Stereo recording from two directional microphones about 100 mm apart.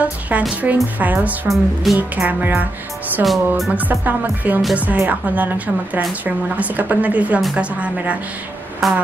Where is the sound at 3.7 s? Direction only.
15° right (ahead or behind).